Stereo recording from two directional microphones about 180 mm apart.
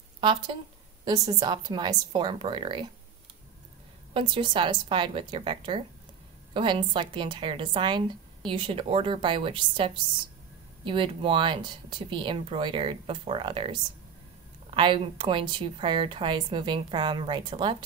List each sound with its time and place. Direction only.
0.2 s speech: 25° right (ahead or behind)
4.1 s speech: 25° right (ahead or behind)